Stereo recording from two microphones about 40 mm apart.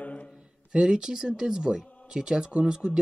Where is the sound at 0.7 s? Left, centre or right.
Right.